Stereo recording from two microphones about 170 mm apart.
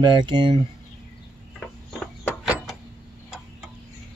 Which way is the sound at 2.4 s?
5° right (ahead or behind).